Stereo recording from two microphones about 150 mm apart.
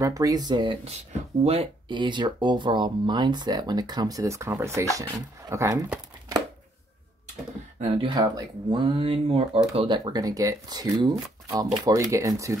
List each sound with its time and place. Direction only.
0.0 s speech: 25° right (ahead or behind)
0.8 s speech: 45° right (ahead or behind); by 5.9 s 20° right (ahead or behind)
8.0 s speech: 30° right (ahead or behind)